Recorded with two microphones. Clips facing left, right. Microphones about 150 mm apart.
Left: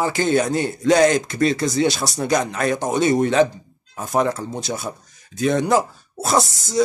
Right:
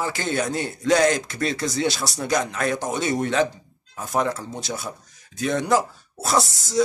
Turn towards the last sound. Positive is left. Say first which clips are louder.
# left 3 dB
turn(degrees=20)  # may be behind; listen again after turning